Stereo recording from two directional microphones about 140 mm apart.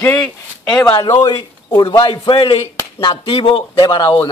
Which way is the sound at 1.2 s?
30° left (ahead or behind).